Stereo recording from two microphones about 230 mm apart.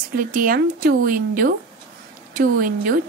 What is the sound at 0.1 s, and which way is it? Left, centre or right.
A woman's voice, right.